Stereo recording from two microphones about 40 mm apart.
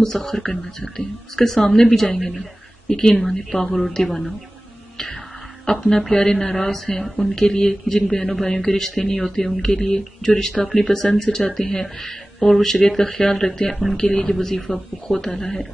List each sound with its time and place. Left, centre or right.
0.0 s speech: centre
5.7 s speech: centre